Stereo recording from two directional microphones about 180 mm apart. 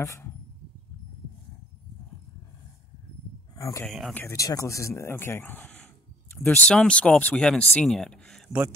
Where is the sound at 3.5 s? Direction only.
20° left (ahead or behind).